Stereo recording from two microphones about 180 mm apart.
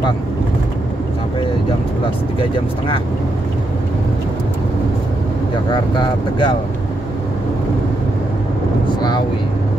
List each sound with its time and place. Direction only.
5.7 s speech: 25° left (ahead or behind)
8.8 s speech: 25° left (ahead or behind)